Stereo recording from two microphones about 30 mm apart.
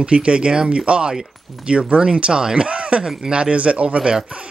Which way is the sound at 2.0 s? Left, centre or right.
Right.